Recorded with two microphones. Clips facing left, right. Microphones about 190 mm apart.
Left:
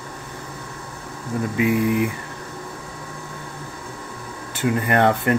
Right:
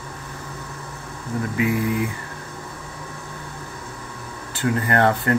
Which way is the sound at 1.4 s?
20° left (ahead or behind).